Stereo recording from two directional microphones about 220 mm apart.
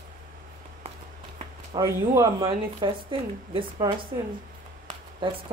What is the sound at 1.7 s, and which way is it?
Speech, 15° right (ahead or behind).